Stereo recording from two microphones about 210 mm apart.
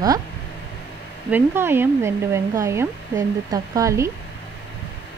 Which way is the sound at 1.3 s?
10° right (ahead or behind).